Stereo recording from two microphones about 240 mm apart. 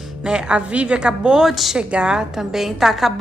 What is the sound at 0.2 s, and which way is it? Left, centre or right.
A woman's voice, centre.